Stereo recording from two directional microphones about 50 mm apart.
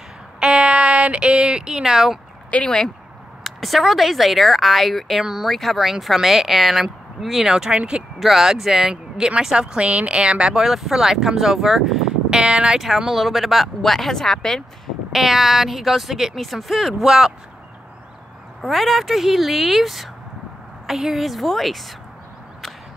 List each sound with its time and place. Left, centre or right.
0.4 s a sound: centre
2.5 s speech: centre
3.4 s speech: centre
5.2 s speech: centre
5.5 s speech: centre
7.7 s speech: centre
8.2 s speech: centre
10.6 s speech: centre
12.3 s speech: centre
12.8 s speech: centre
15.1 s speech: centre
18.6 s speech: centre